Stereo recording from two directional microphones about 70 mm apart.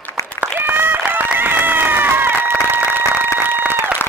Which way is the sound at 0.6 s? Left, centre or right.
Right.